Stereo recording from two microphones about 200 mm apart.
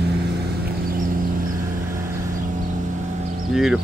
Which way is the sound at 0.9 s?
45° right (ahead or behind).